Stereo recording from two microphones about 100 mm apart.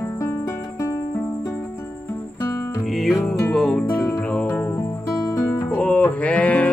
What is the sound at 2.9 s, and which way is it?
Music, centre (ahead or behind).